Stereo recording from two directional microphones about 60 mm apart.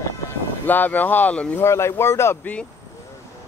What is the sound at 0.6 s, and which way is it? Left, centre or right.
Speech, left.